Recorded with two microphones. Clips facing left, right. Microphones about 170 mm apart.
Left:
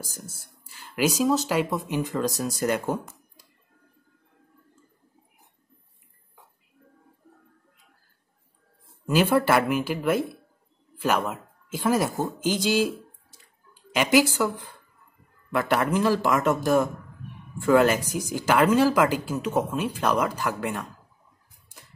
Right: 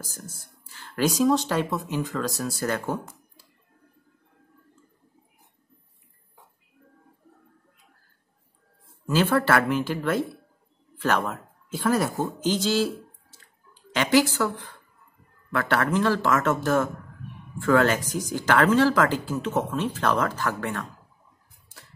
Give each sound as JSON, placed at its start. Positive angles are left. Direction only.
{"t": 0.0, "sound": "speech", "side_deg": 10}
{"t": 9.0, "sound": "speech", "side_deg": 15}
{"t": 15.5, "sound": "speech", "side_deg": 10}